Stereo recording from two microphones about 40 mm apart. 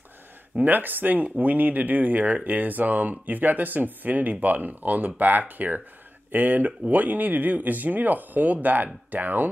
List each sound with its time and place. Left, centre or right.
0.6 s speech: right